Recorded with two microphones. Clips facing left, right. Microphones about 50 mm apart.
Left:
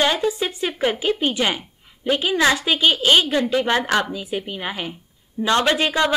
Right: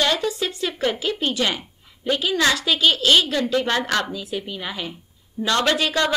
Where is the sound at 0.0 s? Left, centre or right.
Left.